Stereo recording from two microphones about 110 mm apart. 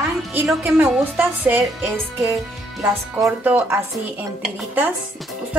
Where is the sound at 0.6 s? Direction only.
15° right (ahead or behind).